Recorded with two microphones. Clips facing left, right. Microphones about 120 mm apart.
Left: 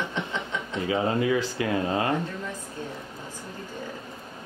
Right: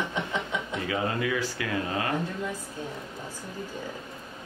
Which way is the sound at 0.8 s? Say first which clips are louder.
Left 6 dB; 25° left (ahead or behind).